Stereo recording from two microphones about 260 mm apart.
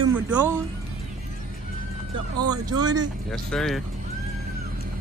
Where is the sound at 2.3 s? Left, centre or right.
Centre.